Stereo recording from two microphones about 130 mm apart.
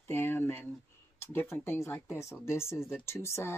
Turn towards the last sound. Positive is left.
turn(degrees=20)  # may be behind; listen again after turning